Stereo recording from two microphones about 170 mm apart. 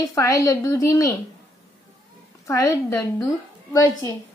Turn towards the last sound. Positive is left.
turn(degrees=15)  # may be behind; listen again after turning